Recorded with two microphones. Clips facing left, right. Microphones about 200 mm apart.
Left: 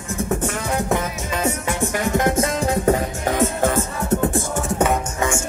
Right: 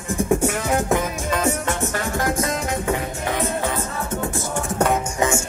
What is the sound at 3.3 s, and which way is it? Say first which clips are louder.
Music: left 6 dB; 45° left (ahead or behind).